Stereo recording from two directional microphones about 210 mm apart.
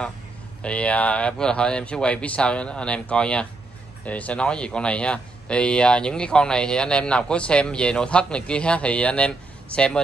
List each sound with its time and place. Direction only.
0.6 s speech: 5° left (ahead or behind)